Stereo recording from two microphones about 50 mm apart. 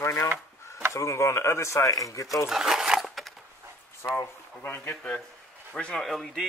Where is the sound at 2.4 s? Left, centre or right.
Centre.